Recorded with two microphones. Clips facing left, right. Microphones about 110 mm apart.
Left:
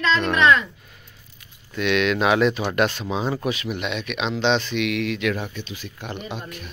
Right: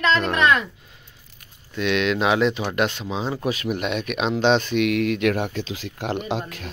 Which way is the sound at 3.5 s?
45° right (ahead or behind).